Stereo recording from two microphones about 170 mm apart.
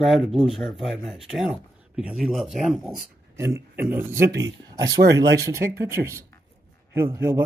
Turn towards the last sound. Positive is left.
turn(degrees=-15)  # may be behind; listen again after turning